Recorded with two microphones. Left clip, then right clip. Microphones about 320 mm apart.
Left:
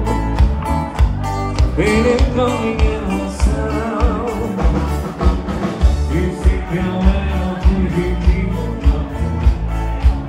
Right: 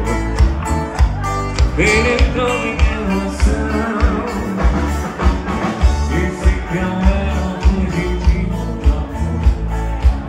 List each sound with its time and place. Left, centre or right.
1.8 s music: left